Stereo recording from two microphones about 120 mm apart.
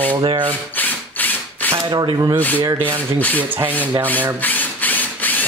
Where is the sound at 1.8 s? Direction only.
35° right (ahead or behind).